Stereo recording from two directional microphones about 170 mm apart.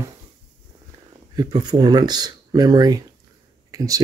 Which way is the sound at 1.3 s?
25° right (ahead or behind).